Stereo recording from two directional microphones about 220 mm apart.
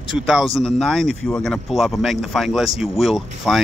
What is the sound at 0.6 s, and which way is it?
Speech, 5° left (ahead or behind).